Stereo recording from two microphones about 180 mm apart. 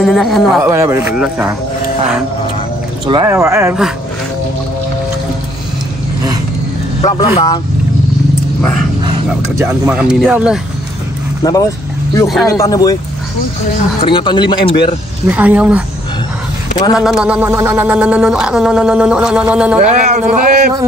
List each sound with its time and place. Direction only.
0.0 s speech: centre (ahead or behind)
0.7 s speech: 15° right (ahead or behind)
3.1 s speech: 20° right (ahead or behind)
7.0 s speech: 25° left (ahead or behind)
9.6 s speech: 10° right (ahead or behind)
11.4 s speech: 20° left (ahead or behind)
14.0 s speech: 25° left (ahead or behind)
15.2 s speech: 10° right (ahead or behind)
16.9 s speech: 5° right (ahead or behind)
19.8 s speech: 40° right (ahead or behind)